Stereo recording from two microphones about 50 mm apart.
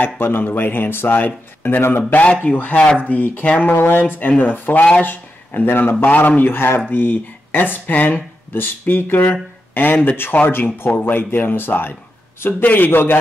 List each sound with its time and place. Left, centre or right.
0.0 s speech: left
2.4 s speech: left
6.0 s speech: left
10.3 s speech: left